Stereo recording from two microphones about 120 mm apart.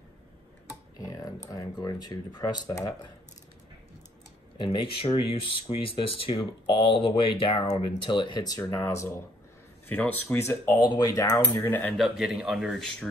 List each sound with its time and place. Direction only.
0.9 s speech: 30° left (ahead or behind)
4.7 s speech: 50° left (ahead or behind)
8.5 s speech: 20° left (ahead or behind)
10.8 s speech: 35° left (ahead or behind)
11.6 s speech: 15° left (ahead or behind)
12.0 s speech: 5° right (ahead or behind)